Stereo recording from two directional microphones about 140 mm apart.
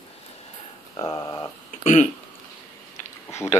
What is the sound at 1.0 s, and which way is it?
Speech, 30° left (ahead or behind).